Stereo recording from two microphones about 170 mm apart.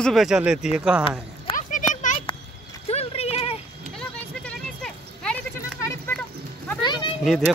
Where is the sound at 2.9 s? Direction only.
35° left (ahead or behind).